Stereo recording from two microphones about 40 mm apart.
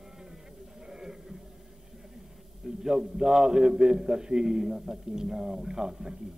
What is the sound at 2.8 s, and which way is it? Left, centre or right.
A man's voice, centre.